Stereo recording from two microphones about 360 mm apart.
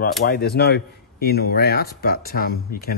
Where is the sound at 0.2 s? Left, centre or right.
Left.